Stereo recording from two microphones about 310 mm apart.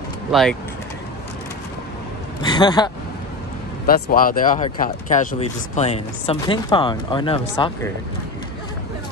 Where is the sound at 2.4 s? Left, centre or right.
Centre.